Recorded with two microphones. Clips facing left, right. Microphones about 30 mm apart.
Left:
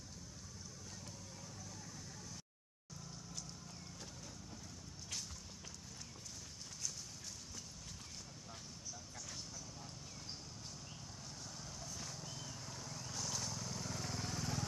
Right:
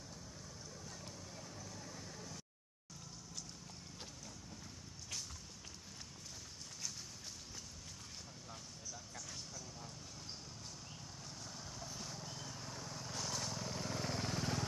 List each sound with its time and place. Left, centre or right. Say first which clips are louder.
11.4 s vehicle: right 2 dB; centre; by 14.7 s right